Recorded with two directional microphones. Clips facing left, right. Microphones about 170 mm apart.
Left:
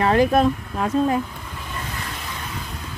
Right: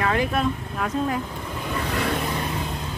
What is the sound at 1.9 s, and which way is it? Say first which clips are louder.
Vehicle: right 8 dB; 65° right (ahead or behind).